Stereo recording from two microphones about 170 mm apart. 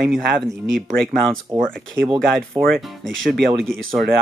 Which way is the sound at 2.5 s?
25° right (ahead or behind).